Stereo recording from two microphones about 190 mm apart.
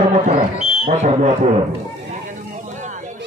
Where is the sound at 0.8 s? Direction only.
40° right (ahead or behind).